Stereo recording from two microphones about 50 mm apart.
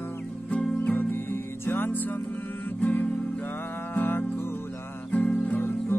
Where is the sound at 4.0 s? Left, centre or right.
Left.